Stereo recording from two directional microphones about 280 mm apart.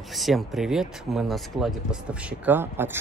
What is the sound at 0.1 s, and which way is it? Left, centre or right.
Speech, centre.